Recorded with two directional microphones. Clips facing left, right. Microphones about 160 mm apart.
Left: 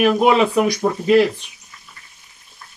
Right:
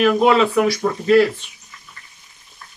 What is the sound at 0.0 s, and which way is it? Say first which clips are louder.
Speech: even; 15° left (ahead or behind).